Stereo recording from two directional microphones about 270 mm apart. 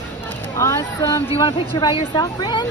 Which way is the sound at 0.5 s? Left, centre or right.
Centre.